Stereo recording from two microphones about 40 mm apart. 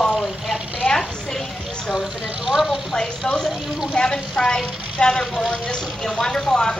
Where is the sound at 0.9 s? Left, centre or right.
Left.